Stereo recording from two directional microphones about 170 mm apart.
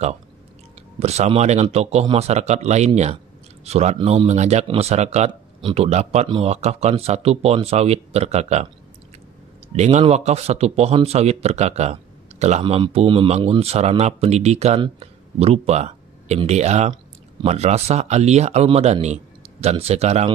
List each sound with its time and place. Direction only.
0.9 s speech: 40° right (ahead or behind)
9.7 s speech: 40° right (ahead or behind)